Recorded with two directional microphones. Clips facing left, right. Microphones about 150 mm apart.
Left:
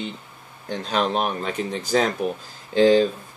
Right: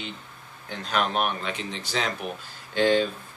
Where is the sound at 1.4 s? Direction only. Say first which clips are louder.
Left 6 dB; 45° left (ahead or behind).